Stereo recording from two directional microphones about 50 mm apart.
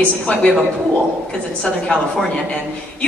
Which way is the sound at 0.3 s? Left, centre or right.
Left.